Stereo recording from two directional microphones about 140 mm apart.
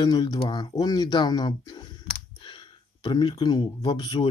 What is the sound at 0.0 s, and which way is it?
Speech, 30° left (ahead or behind).